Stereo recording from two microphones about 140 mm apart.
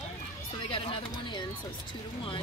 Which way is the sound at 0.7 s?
40° left (ahead or behind).